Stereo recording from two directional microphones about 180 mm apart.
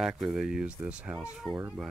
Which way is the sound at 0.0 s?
Centre (ahead or behind).